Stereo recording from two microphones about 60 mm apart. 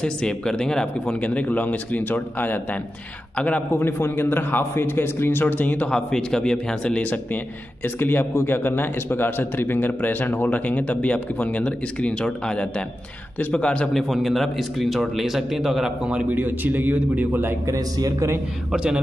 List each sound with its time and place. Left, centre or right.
0.0 s speech: centre
1.2 s a man's voice: left
3.7 s a man's voice: left
5.9 s speech: centre
7.8 s a man's voice: left; by 13.8 s centre
13.9 s a man's voice: centre
16.1 s a man's voice: right
17.6 s a man's voice: right